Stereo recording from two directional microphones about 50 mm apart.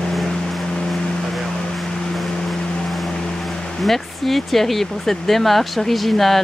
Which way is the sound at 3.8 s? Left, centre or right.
Centre.